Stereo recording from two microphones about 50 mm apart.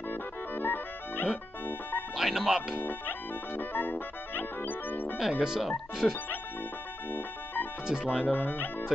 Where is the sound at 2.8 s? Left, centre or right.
Left.